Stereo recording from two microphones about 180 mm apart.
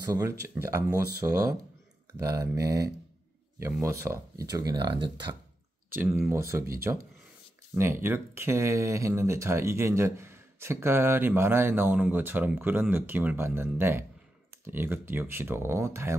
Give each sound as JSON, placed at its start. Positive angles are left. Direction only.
{"t": 0.0, "sound": "speech", "side_deg": -20}
{"t": 5.9, "sound": "speech", "side_deg": -10}